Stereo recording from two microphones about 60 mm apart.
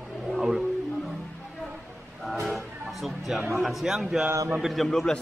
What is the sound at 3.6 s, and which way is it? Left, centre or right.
A man's voice, centre.